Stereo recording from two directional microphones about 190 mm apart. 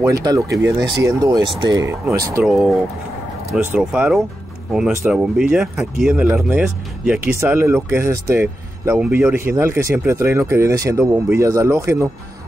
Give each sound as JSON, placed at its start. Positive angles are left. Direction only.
{"t": 0.0, "sound": "speech", "side_deg": -20}
{"t": 2.4, "sound": "speech", "side_deg": 0}